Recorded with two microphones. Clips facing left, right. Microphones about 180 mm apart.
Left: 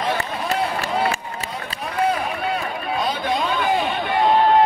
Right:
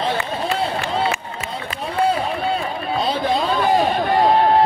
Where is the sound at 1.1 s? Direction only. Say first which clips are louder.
Right 1 dB; 35° left (ahead or behind).